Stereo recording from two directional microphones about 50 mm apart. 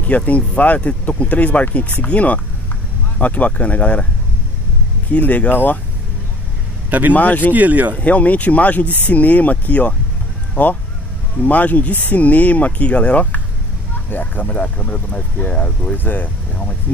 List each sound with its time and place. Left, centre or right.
0.0 s speech: left
5.1 s speech: left
6.9 s speech: right
7.2 s speech: left
7.5 s speech: right
8.0 s speech: left
16.0 s speech: left